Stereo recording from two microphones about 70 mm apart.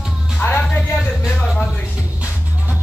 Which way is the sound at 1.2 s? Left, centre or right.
Centre.